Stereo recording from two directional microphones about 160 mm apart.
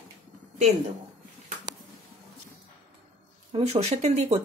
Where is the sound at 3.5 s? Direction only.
40° right (ahead or behind).